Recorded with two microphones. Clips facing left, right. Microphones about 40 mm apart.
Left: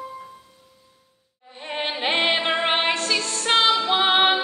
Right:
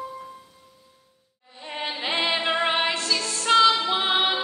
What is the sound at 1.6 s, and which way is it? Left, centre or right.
Music, left.